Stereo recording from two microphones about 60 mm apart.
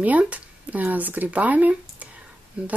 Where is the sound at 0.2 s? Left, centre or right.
Right.